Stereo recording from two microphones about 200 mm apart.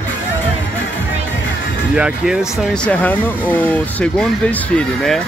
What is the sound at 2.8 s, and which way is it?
Speech, 10° left (ahead or behind).